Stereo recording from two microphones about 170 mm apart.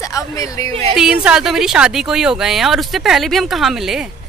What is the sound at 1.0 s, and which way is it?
Speech, 5° right (ahead or behind).